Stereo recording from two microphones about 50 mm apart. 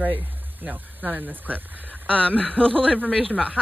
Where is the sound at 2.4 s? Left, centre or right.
Left.